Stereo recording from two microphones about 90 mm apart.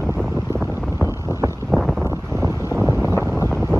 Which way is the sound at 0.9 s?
30° right (ahead or behind).